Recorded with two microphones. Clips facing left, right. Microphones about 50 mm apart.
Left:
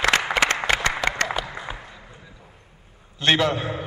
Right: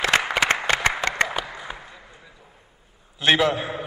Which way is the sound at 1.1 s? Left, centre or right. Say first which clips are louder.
Right 1 dB; centre.